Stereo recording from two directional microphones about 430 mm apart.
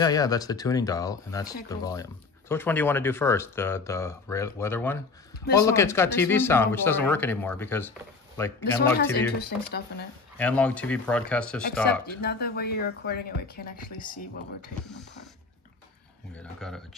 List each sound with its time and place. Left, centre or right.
0.0 s speech: centre
9.4 s speech: left
10.3 s speech: centre
12.2 s speech: left
16.5 s speech: centre